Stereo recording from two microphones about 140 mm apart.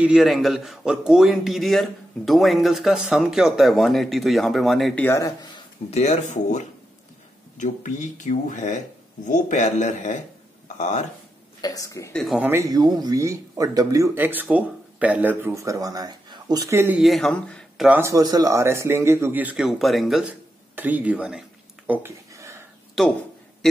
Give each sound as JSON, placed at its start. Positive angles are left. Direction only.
{"t": 0.0, "sound": "a man's voice", "side_deg": -5}
{"t": 4.9, "sound": "speech", "side_deg": 15}
{"t": 5.9, "sound": "speech", "side_deg": 50}
{"t": 11.6, "sound": "speech", "side_deg": 25}
{"t": 12.1, "sound": "a man's voice", "side_deg": 0}
{"t": 12.4, "sound": "speech", "side_deg": -15}
{"t": 17.0, "sound": "speech", "side_deg": 0}
{"t": 17.8, "sound": "a man's voice", "side_deg": -15}
{"t": 18.1, "sound": "a man's voice", "side_deg": -25}
{"t": 20.7, "sound": "a sound", "side_deg": -10}
{"t": 23.0, "sound": "a man's voice", "side_deg": 0}